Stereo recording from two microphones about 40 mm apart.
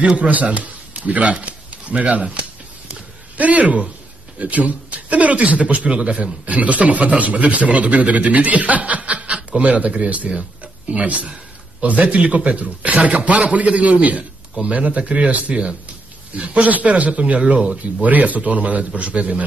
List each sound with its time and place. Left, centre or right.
0.0 s a man's voice: right
5.9 s a man's voice: right
6.4 s a man's voice: right